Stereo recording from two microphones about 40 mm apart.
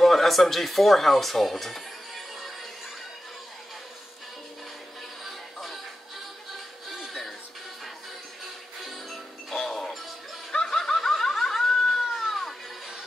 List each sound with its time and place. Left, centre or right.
0.0 s speech: centre
5.2 s music: centre
7.1 s music: centre
8.8 s music: centre
9.7 s music: centre
10.5 s snicker: centre
12.1 s music: centre